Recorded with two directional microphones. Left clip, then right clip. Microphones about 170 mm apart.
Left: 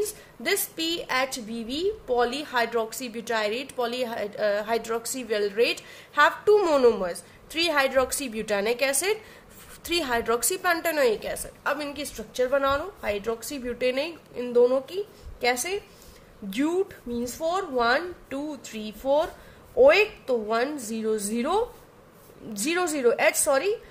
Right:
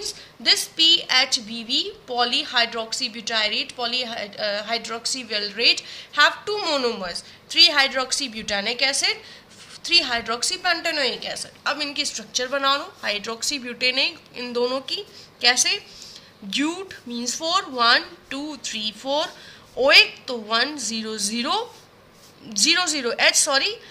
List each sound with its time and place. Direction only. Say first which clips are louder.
0.0 s a woman's voice: right 5 dB; 55° left (ahead or behind)
12.4 s a woman's voice: right 2 dB; 45° left (ahead or behind)
17.2 s a woman's voice: right 4 dB; 45° left (ahead or behind)